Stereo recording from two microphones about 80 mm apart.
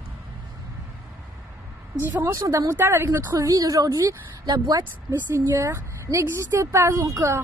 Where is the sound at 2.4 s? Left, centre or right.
Right.